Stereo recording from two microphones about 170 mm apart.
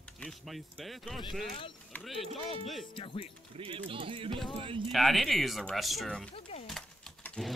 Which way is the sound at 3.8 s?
30° right (ahead or behind).